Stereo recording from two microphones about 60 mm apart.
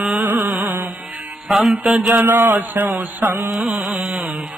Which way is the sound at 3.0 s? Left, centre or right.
Right.